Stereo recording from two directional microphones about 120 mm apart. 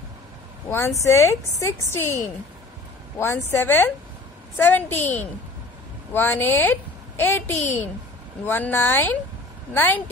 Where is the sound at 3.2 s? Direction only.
20° left (ahead or behind).